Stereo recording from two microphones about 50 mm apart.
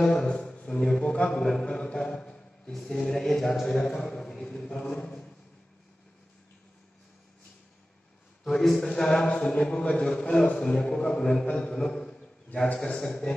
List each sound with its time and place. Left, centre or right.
0.0 s a man's voice: centre
8.5 s a man's voice: centre